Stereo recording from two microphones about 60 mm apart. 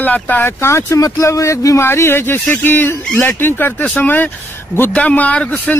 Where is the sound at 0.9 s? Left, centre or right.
Left.